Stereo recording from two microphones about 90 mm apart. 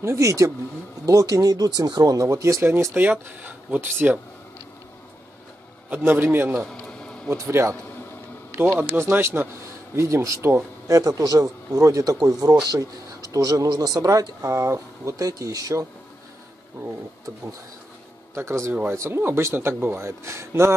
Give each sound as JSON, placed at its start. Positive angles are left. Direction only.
{"t": 0.0, "sound": "speech", "side_deg": -35}
{"t": 2.2, "sound": "speech", "side_deg": -35}
{"t": 5.9, "sound": "speech", "side_deg": -25}
{"t": 6.7, "sound": "bee", "side_deg": 10}
{"t": 7.2, "sound": "speech", "side_deg": -30}
{"t": 8.7, "sound": "speech", "side_deg": -25}
{"t": 18.3, "sound": "speech", "side_deg": -30}